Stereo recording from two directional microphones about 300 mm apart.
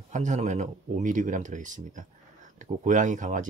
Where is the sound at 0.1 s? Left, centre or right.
Right.